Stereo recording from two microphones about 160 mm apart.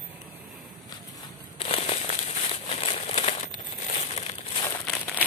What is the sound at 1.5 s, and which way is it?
Crumpling, 40° left (ahead or behind).